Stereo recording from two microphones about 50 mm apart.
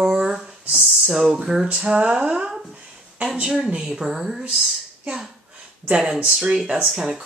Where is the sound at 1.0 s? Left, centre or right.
Centre.